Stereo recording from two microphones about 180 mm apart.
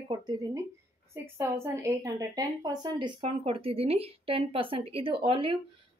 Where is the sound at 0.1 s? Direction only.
20° right (ahead or behind).